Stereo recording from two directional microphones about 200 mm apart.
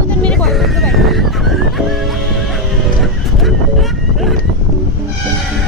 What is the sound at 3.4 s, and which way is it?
Fowl, centre (ahead or behind).